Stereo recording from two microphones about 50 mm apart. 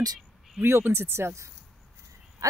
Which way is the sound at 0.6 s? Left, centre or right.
Right.